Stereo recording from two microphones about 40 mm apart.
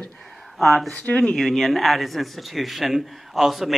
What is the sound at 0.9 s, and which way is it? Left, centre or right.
Speech, left.